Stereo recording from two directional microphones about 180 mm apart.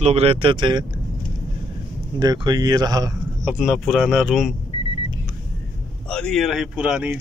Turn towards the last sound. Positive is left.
turn(degrees=-5)  # may be behind; listen again after turning